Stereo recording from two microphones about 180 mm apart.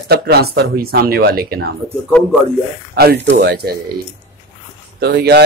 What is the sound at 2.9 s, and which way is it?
Speech, 60° right (ahead or behind).